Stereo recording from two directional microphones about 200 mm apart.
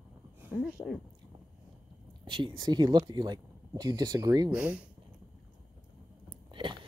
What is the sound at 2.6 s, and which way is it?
Speech, 20° right (ahead or behind).